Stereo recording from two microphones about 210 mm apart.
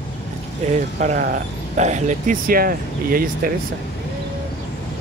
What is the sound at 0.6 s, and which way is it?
Speech, 35° right (ahead or behind).